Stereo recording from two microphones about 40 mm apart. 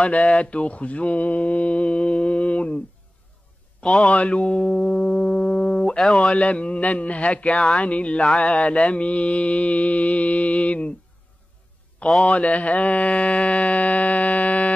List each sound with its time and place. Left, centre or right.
0.0 s a man's voice: left
4.0 s a man's voice: left
12.3 s a man's voice: left